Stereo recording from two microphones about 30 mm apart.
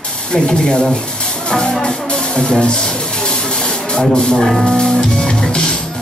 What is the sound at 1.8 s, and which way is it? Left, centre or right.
Music, left.